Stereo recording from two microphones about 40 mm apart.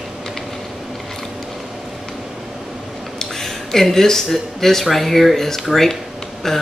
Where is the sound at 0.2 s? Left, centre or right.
Centre.